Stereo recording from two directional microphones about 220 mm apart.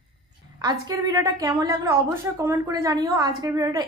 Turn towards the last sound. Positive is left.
turn(degrees=-15)  # may be behind; listen again after turning